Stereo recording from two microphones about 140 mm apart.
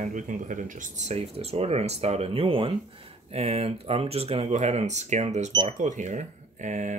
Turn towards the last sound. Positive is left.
turn(degrees=-60)  # may be behind; listen again after turning